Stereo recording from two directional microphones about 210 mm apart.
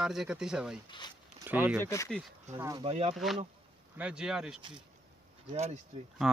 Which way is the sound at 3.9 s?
5° right (ahead or behind).